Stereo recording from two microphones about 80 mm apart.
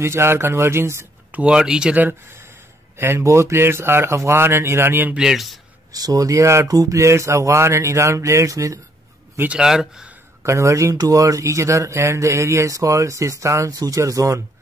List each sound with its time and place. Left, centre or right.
0.0 s speech: right
1.3 s speech: centre
3.0 s speech: right
5.1 s a man's voice: centre
5.9 s speech: right
9.6 s speech: centre
10.4 s speech: right